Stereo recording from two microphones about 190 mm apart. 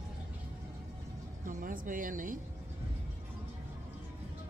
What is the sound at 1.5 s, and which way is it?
Speech, 45° right (ahead or behind).